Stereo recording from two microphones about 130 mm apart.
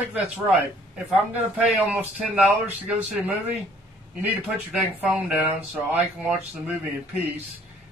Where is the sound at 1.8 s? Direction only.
15° right (ahead or behind).